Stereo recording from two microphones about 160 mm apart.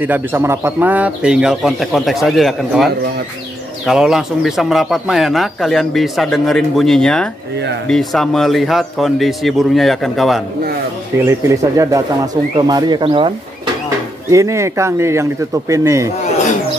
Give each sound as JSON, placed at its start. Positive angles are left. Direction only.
{"t": 0.0, "sound": "speech", "side_deg": -10}
{"t": 11.2, "sound": "speech", "side_deg": -20}
{"t": 14.3, "sound": "speech", "side_deg": -20}